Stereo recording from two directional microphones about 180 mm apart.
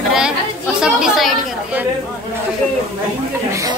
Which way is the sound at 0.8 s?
Centre (ahead or behind).